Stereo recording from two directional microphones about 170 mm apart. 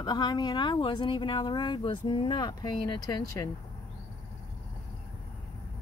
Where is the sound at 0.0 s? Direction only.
25° left (ahead or behind).